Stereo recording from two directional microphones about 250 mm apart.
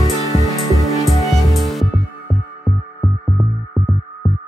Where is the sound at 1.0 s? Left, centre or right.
Centre.